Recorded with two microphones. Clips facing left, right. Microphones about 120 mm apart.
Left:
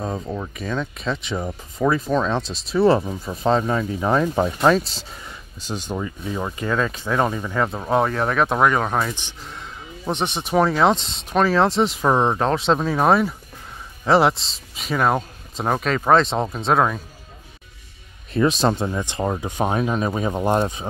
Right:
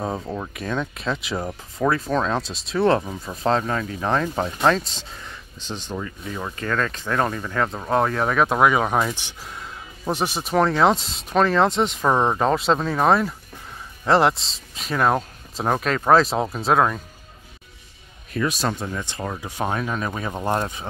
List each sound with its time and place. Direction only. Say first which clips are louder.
0.0 s speech: even; 10° right (ahead or behind)
18.3 s speech: left 5 dB; 25° left (ahead or behind)